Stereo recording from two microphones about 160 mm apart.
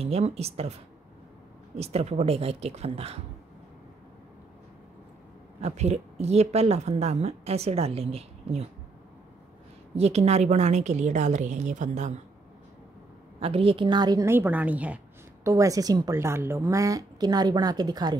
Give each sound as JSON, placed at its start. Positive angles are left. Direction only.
{"t": 0.0, "sound": "a woman's voice", "side_deg": -40}
{"t": 1.8, "sound": "a woman's voice", "side_deg": -40}
{"t": 5.6, "sound": "a woman's voice", "side_deg": -45}
{"t": 9.9, "sound": "a woman's voice", "side_deg": -40}
{"t": 13.4, "sound": "a woman's voice", "side_deg": -35}
{"t": 15.4, "sound": "a woman's voice", "side_deg": -20}